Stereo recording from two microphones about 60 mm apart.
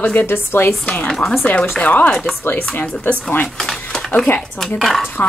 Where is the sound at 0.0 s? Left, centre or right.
Left.